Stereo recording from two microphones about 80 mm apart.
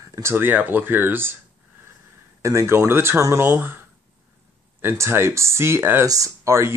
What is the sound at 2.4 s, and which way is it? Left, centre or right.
Speech, right.